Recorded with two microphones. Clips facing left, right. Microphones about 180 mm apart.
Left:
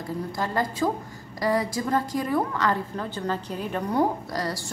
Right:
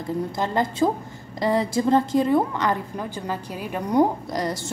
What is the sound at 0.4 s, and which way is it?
A woman's voice, 20° right (ahead or behind).